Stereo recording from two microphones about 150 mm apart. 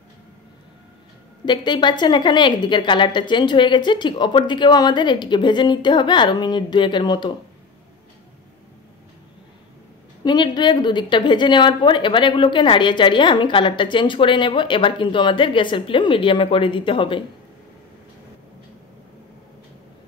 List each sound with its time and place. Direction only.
1.4 s a woman's voice: 30° left (ahead or behind)
10.2 s a woman's voice: 30° left (ahead or behind)